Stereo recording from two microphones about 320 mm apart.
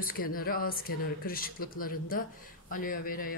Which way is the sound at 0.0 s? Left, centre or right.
Left.